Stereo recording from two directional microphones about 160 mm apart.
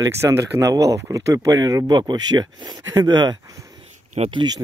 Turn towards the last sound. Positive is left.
turn(degrees=-30)  # may be behind; listen again after turning